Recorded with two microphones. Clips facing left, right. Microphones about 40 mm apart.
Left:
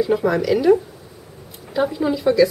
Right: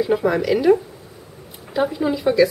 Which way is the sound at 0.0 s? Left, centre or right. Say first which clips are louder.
Even; centre.